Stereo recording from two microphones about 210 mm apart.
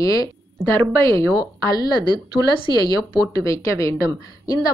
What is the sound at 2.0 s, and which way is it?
Speech, 20° right (ahead or behind).